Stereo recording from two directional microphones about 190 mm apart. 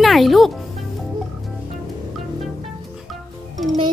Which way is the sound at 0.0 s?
Centre (ahead or behind).